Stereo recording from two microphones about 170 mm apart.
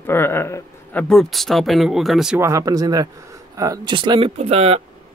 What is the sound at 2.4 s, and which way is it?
A man's voice, 20° right (ahead or behind).